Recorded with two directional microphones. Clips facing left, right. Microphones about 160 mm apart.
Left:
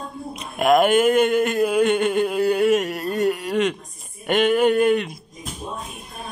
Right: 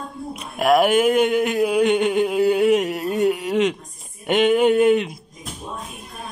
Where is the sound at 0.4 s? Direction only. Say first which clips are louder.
Even; 5° right (ahead or behind).